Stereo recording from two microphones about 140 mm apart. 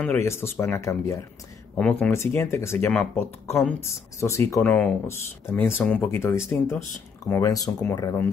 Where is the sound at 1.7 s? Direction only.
10° left (ahead or behind).